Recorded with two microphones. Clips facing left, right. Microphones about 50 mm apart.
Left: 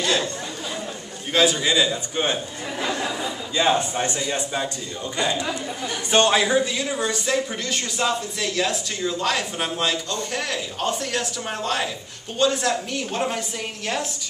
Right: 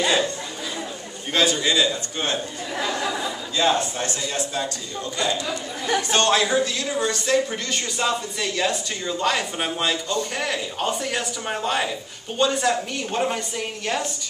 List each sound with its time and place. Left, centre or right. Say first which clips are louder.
0.0 s chatter: right 2 dB; centre
1.3 s a man's voice: left 1 dB; centre